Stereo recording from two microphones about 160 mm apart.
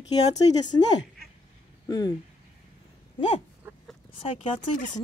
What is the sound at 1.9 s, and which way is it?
Speech, 25° left (ahead or behind).